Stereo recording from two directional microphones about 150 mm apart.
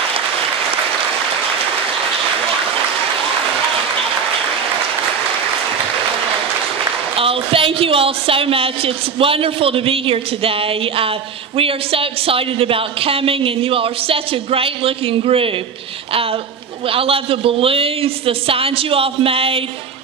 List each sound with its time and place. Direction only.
7.2 s a woman's voice: 40° right (ahead or behind)
16.9 s a woman's voice: 40° right (ahead or behind)